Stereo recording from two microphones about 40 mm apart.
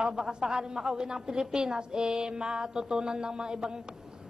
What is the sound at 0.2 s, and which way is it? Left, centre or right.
A woman's voice, right.